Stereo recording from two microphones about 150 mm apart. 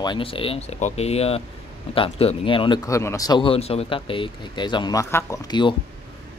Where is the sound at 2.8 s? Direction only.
20° left (ahead or behind).